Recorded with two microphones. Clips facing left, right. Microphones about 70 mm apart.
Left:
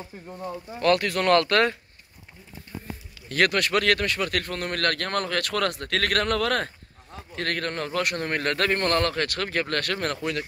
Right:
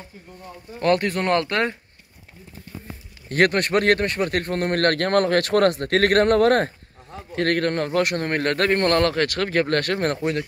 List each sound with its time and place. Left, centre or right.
0.7 s speech: right
3.3 s a man's voice: right